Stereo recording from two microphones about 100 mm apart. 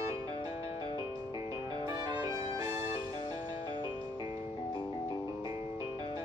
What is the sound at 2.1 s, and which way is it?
Music, 45° right (ahead or behind).